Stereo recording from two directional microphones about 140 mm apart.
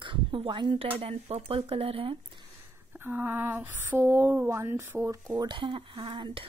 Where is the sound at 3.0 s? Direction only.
15° right (ahead or behind).